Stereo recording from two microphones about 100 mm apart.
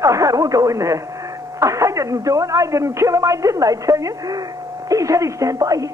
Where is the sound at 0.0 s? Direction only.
35° right (ahead or behind).